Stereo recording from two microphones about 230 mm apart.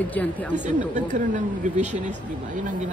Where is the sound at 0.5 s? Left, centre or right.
Right.